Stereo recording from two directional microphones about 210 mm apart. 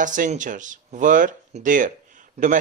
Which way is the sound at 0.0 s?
35° right (ahead or behind).